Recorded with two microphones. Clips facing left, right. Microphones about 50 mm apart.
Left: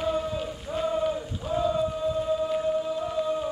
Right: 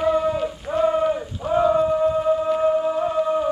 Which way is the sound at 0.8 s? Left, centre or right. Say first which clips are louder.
Right 6 dB; right.